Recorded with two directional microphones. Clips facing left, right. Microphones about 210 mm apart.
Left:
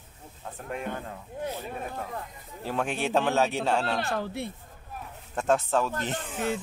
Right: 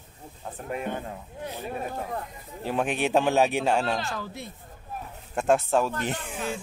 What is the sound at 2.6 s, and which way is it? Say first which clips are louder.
A man's voice: right 3 dB; 20° right (ahead or behind).